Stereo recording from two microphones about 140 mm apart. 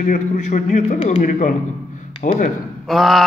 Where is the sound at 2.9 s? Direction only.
Centre (ahead or behind).